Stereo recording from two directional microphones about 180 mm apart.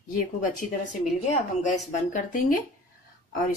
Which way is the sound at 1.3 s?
40° left (ahead or behind).